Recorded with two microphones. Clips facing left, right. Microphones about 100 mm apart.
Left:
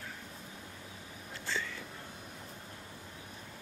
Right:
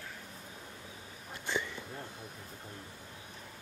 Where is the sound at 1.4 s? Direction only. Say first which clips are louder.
Right 2 dB; 20° right (ahead or behind).